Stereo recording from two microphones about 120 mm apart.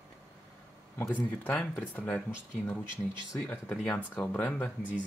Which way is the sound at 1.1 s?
10° left (ahead or behind).